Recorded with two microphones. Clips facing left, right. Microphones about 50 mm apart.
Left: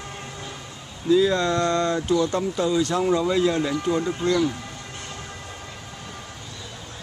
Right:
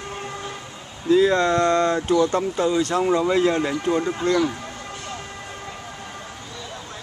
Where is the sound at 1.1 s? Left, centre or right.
Right.